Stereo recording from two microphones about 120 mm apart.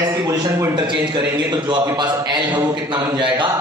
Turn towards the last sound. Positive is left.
turn(degrees=-40)  # may be behind; listen again after turning